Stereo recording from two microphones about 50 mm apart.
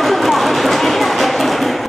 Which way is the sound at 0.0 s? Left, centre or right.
Centre.